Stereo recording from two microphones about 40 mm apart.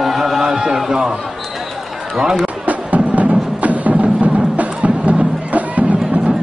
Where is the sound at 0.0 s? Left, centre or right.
Centre.